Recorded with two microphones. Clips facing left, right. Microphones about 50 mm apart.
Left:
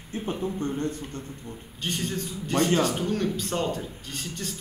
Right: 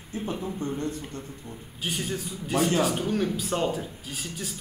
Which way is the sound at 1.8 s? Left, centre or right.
Centre.